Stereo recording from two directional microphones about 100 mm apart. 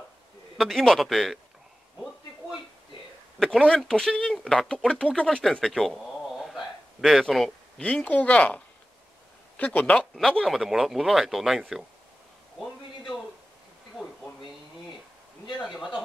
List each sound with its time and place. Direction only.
0.6 s speech: 5° left (ahead or behind)
3.3 s speech: 5° left (ahead or behind)
5.1 s cat: 5° left (ahead or behind)
7.8 s speech: 15° left (ahead or behind)
10.1 s speech: 5° left (ahead or behind)
15.6 s speech: 5° right (ahead or behind)